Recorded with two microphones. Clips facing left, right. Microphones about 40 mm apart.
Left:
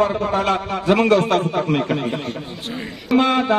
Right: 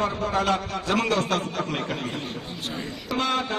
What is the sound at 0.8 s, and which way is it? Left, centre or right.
Speech, centre.